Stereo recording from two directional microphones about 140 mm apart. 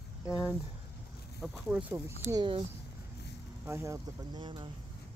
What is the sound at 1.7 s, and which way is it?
Speech, 10° right (ahead or behind).